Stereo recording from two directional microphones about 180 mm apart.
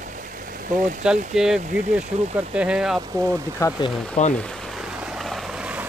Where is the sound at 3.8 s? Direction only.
35° left (ahead or behind).